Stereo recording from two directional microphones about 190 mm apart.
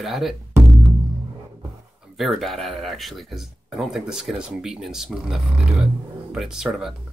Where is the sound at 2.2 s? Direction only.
Centre (ahead or behind).